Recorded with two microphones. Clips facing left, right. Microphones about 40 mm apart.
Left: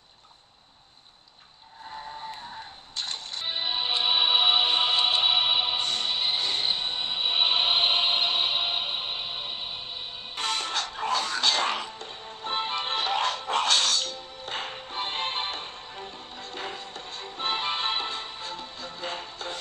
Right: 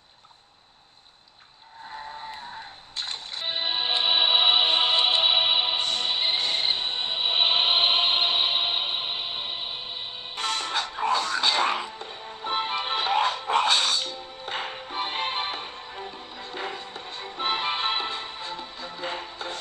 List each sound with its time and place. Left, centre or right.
1.9 s a sound: centre
3.0 s music: centre
10.3 s music: centre